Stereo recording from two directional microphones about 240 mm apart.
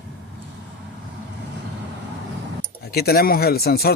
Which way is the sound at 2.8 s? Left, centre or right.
Left.